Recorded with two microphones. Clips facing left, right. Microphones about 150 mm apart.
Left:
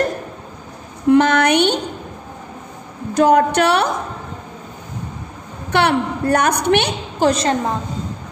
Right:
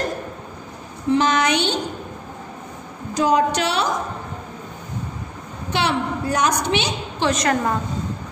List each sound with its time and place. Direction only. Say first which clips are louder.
1.0 s a sound: left 5 dB; 60° left (ahead or behind)
3.2 s a woman's voice: left 5 dB; 60° left (ahead or behind)
5.7 s a woman's voice: left 5 dB; 60° left (ahead or behind)
7.2 s a woman's voice: left 4 dB; 35° left (ahead or behind)